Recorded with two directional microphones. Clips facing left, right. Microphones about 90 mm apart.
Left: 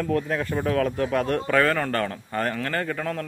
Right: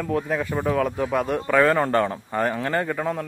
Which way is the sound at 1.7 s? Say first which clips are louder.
Right 5 dB; 20° right (ahead or behind).